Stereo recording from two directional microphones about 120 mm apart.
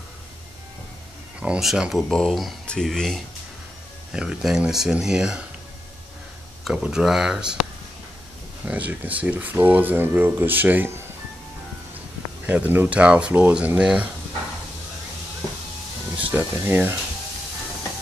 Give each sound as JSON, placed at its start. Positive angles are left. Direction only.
{"t": 1.4, "sound": "speech", "side_deg": -5}
{"t": 4.1, "sound": "speech", "side_deg": -5}
{"t": 6.6, "sound": "speech", "side_deg": -5}
{"t": 8.6, "sound": "speech", "side_deg": -10}
{"t": 12.4, "sound": "speech", "side_deg": -15}
{"t": 16.2, "sound": "speech", "side_deg": -15}